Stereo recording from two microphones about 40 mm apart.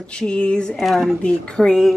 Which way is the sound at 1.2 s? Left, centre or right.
Left.